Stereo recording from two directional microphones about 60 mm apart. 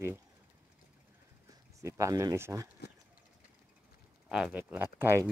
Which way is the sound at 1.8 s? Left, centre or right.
Right.